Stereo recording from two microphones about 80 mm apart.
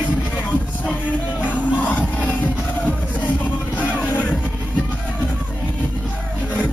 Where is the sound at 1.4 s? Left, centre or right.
Centre.